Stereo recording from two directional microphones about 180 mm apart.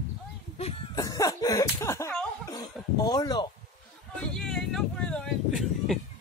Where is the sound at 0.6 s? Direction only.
35° left (ahead or behind).